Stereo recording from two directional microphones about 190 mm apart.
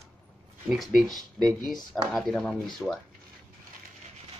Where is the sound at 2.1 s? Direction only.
Centre (ahead or behind).